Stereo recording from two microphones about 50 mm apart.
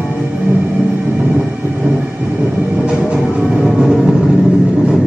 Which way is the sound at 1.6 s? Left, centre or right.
Right.